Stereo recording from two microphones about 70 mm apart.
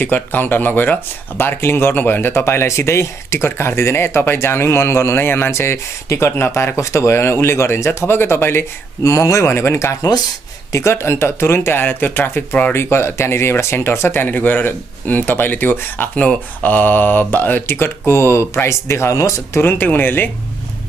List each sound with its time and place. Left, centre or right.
0.0 s speech: left
12.7 s speech: left
19.6 s speech: left